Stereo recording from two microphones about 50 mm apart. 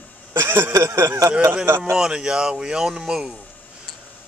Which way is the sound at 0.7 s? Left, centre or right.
Right.